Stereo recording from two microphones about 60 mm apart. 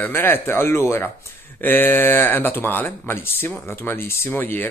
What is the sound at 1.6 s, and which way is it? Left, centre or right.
Speech, left.